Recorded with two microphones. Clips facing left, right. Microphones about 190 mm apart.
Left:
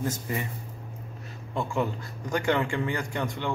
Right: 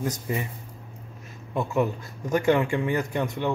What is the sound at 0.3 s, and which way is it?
Speech, 20° right (ahead or behind).